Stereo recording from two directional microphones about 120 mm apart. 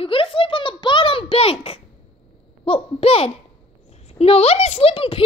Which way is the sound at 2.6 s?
50° left (ahead or behind).